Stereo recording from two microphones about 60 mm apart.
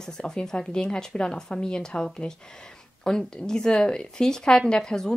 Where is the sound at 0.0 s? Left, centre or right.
Centre.